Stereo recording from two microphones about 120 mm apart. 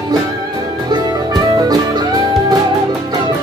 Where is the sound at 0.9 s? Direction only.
35° right (ahead or behind).